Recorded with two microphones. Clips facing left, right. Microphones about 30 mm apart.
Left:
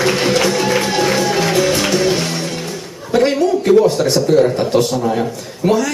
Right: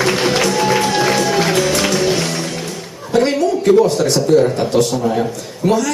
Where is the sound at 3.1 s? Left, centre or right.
Centre.